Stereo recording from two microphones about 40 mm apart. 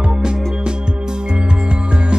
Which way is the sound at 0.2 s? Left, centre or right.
Right.